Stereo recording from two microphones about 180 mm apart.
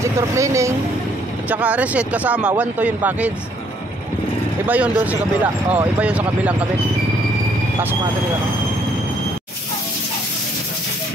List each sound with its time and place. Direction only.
0.4 s speech: 15° right (ahead or behind)
4.6 s speech: 10° right (ahead or behind)